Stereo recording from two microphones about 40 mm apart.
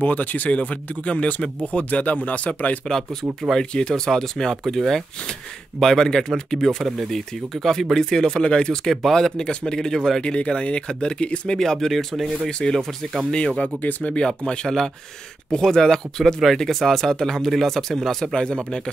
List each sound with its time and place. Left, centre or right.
0.0 s speech: left
0.5 s speech: left
2.8 s speech: centre
10.2 s speech: left
11.5 s speech: centre
12.4 s speech: left
13.6 s speech: left
14.1 s speech: left
18.3 s speech: left